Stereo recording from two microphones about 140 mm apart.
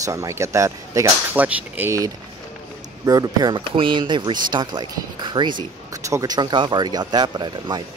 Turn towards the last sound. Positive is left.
turn(degrees=-30)  # may be behind; listen again after turning